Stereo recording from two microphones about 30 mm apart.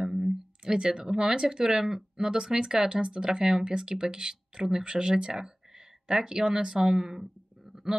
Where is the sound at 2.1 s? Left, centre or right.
Right.